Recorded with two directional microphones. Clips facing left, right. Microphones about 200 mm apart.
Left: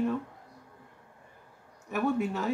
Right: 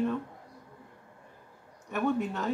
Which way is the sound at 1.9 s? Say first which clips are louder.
Left 1 dB; 10° left (ahead or behind).